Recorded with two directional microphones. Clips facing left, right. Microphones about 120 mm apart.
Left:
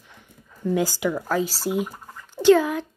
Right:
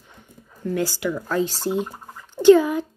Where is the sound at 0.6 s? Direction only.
15° left (ahead or behind).